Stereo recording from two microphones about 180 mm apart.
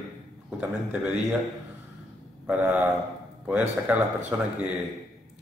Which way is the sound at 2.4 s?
5° right (ahead or behind).